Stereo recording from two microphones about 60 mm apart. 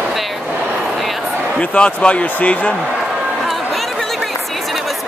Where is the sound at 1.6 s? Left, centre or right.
Left.